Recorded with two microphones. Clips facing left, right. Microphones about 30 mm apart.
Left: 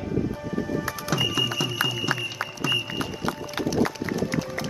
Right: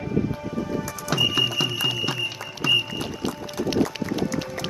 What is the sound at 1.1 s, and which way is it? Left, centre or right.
Music, centre.